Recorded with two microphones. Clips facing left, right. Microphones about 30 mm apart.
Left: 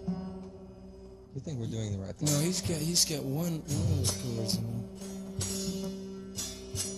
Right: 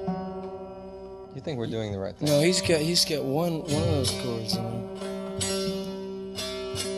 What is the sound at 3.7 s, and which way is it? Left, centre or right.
Speech, right.